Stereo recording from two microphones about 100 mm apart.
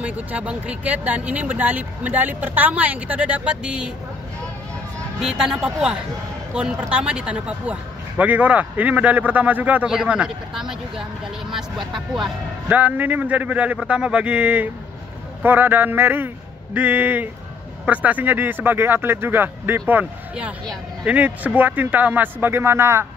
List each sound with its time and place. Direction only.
0.0 s speech: 15° right (ahead or behind)
5.2 s speech: 5° right (ahead or behind)
12.6 s speech: 15° right (ahead or behind)